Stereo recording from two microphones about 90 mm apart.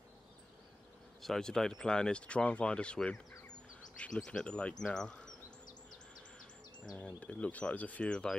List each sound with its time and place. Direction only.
1.2 s speech: 5° left (ahead or behind)
7.2 s speech: 15° left (ahead or behind)